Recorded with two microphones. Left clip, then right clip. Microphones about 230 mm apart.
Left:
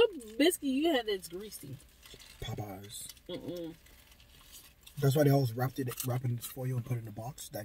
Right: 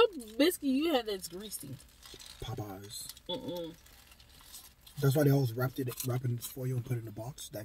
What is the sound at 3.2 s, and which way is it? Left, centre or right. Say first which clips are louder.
Speech: right 3 dB; centre.